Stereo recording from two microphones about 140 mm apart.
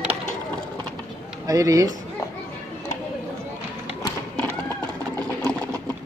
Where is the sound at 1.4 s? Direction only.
25° right (ahead or behind).